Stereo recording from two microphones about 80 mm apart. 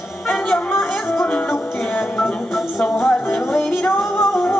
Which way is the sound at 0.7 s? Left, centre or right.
Left.